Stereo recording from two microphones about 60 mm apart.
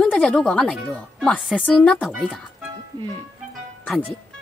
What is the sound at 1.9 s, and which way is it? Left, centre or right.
Speech, centre.